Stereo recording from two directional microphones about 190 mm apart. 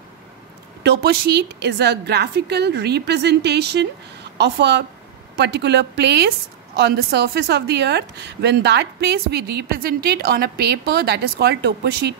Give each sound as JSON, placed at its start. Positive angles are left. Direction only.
{"t": 0.8, "sound": "speech", "side_deg": -55}